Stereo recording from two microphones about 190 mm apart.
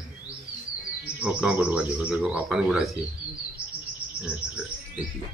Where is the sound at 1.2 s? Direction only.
5° right (ahead or behind).